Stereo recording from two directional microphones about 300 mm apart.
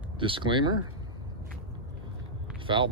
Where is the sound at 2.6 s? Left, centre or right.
Centre.